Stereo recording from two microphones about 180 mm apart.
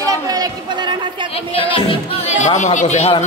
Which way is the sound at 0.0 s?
20° right (ahead or behind).